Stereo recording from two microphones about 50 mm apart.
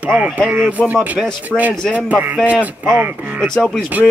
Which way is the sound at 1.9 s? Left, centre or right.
Right.